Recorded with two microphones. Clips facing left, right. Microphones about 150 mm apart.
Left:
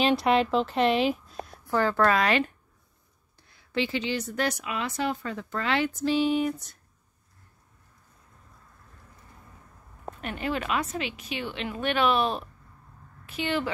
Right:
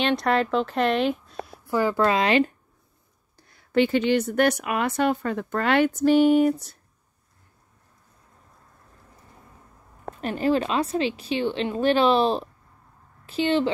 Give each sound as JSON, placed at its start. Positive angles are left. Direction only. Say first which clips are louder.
{"t": 0.0, "sound": "speech", "louder": "even", "side_deg": 5}
{"t": 3.3, "sound": "speech", "louder": "right 8 dB", "side_deg": -50}
{"t": 10.2, "sound": "a woman's voice", "louder": "right 8 dB", "side_deg": -35}